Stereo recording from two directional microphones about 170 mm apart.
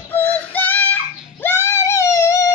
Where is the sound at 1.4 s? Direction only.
15° left (ahead or behind).